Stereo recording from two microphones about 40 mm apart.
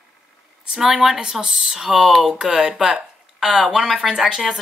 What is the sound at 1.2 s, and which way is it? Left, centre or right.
Speech, centre.